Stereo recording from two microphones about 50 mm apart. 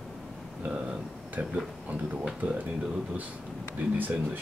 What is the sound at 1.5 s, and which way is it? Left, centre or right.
Speech, right.